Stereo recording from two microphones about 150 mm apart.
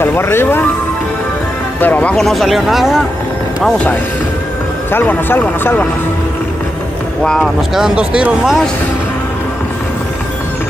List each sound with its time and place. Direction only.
0.0 s speech: 15° left (ahead or behind)
1.8 s speech: 10° left (ahead or behind)
7.2 s speech: centre (ahead or behind)